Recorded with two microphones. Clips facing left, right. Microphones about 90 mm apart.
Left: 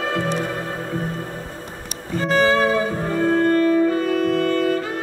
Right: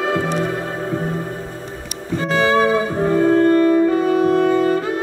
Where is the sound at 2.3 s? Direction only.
20° right (ahead or behind).